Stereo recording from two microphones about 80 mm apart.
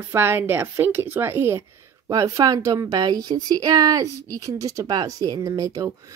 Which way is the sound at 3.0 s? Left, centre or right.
Right.